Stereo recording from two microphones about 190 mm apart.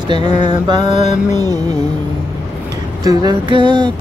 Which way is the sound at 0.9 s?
35° left (ahead or behind).